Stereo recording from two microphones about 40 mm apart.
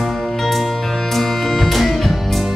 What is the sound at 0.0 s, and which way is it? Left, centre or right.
Music, centre.